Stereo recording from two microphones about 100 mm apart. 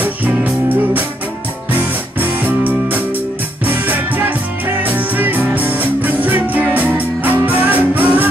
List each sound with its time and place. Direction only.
0.0 s music: 15° right (ahead or behind)
1.7 s music: 15° right (ahead or behind)